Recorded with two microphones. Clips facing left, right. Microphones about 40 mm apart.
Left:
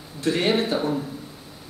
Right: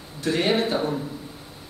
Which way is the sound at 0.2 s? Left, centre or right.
Centre.